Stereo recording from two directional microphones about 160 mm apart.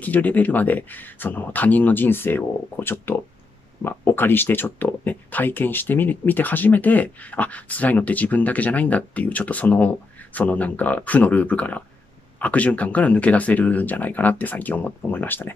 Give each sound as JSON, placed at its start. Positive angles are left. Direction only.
{"t": 0.0, "sound": "speech", "side_deg": 10}